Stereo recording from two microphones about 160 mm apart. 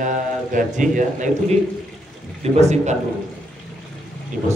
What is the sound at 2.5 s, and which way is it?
Speech, 45° right (ahead or behind).